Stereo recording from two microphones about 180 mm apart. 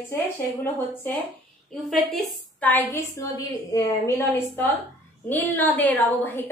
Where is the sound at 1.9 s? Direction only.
Centre (ahead or behind).